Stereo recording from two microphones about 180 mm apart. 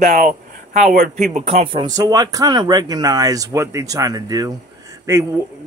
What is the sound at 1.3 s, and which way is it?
Speech, 35° right (ahead or behind).